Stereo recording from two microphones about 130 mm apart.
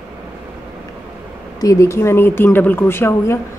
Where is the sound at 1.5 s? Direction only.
25° left (ahead or behind).